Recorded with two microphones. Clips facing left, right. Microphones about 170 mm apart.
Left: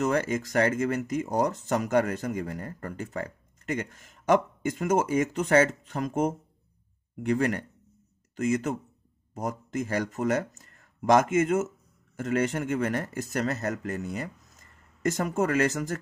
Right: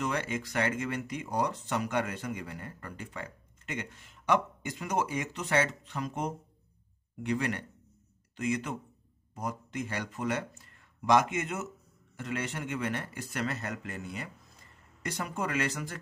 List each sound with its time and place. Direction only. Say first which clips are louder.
0.0 s speech: left 7 dB; 45° left (ahead or behind)